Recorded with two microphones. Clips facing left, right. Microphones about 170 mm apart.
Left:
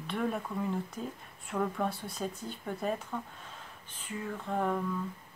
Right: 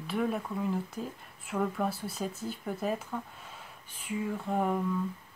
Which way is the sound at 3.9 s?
10° right (ahead or behind).